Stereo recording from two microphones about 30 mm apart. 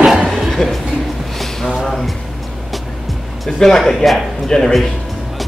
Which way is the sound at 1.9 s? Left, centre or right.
Centre.